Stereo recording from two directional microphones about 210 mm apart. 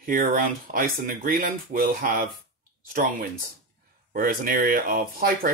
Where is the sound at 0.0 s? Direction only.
40° right (ahead or behind).